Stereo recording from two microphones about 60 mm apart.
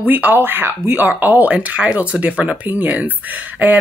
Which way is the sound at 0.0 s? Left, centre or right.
Right.